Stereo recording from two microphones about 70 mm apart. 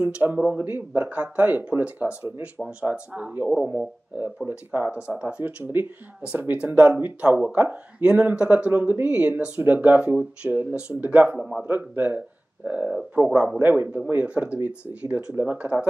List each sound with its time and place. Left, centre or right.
0.0 s speech: right